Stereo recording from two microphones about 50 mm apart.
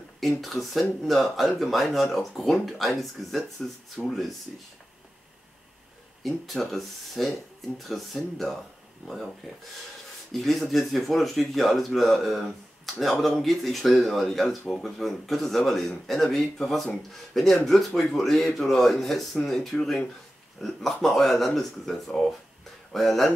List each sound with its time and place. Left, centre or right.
0.2 s speech: centre
4.5 s speech: centre
6.2 s speech: centre
10.3 s speech: centre